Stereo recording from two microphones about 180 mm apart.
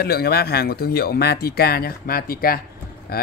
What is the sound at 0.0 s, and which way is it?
Speech, 60° left (ahead or behind).